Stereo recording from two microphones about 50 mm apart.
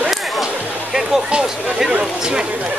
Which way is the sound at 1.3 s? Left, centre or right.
Centre.